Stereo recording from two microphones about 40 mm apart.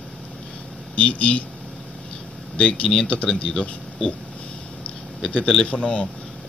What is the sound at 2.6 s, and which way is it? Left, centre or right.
Speech, left.